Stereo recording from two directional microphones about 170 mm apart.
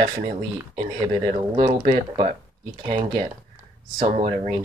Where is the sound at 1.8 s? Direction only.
45° right (ahead or behind).